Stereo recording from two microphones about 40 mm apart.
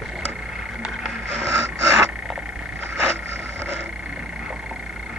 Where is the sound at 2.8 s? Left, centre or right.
Right.